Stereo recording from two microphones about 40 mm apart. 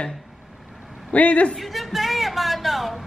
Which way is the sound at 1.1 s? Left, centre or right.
Left.